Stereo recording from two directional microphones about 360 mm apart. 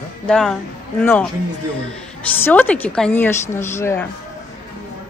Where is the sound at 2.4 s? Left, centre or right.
Centre.